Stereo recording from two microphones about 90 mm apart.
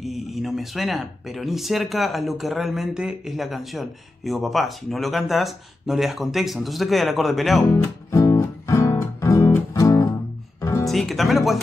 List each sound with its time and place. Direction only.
0.0 s speech: centre (ahead or behind)
7.7 s music: 35° left (ahead or behind)
10.9 s speech: centre (ahead or behind)